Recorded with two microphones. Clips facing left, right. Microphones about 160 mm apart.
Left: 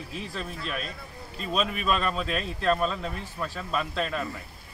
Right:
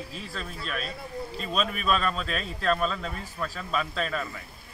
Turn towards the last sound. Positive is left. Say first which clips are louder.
# left 1 dB
turn(degrees=5)  # may be behind; listen again after turning